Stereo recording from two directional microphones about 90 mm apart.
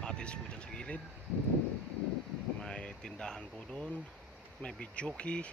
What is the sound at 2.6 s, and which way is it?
Speech, 10° left (ahead or behind).